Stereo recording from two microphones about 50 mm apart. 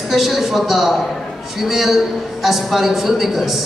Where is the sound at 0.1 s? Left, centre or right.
Centre.